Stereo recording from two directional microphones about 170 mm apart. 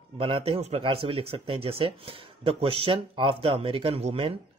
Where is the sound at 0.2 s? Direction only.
35° right (ahead or behind).